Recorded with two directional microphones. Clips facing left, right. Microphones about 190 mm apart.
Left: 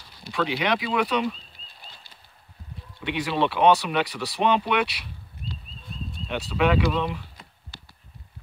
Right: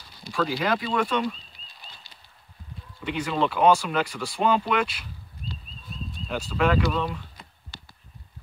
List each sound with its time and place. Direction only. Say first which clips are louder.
0.3 s speech: even; centre (ahead or behind)
3.0 s speech: left 1 dB; centre (ahead or behind)
6.2 s speech: left 1 dB; centre (ahead or behind)